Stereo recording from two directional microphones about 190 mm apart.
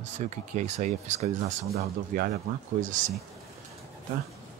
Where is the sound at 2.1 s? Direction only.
50° right (ahead or behind).